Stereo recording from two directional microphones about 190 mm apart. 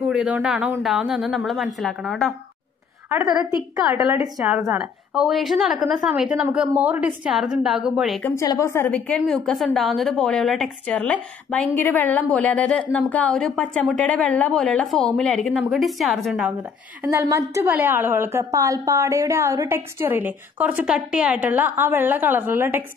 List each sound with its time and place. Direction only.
0.0 s a woman's voice: 5° right (ahead or behind)
3.9 s a woman's voice: 15° right (ahead or behind)
4.4 s a woman's voice: centre (ahead or behind)
8.2 s a woman's voice: 15° left (ahead or behind)
17.1 s a woman's voice: 15° right (ahead or behind)